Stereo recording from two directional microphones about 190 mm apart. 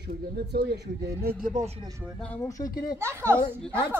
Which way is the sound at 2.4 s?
20° left (ahead or behind).